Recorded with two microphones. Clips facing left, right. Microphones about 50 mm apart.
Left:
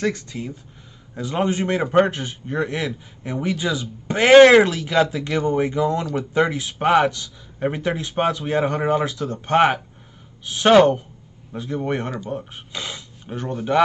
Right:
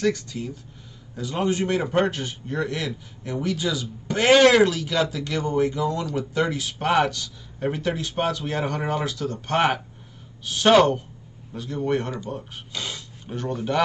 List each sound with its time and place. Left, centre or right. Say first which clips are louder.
0.0 s a man's voice: even; left